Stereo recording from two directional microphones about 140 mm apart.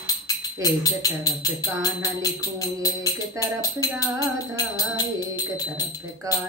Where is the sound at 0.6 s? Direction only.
25° left (ahead or behind).